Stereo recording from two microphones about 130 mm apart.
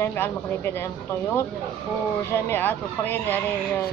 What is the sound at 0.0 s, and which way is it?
Speech, 15° left (ahead or behind).